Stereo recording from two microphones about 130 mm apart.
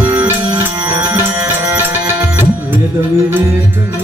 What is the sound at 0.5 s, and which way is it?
Music, 35° right (ahead or behind).